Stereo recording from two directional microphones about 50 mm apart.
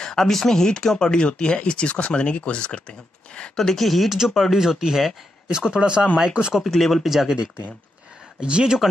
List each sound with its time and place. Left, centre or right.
0.0 s speech: centre
3.5 s speech: centre
4.6 s speech: centre
6.6 s speech: centre
8.4 s speech: centre